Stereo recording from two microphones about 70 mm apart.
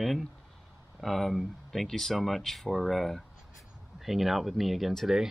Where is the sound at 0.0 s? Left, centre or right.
Centre.